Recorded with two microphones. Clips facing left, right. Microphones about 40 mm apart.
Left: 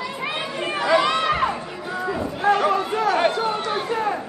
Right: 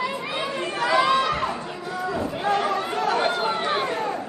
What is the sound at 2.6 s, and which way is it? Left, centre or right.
Chatter, left.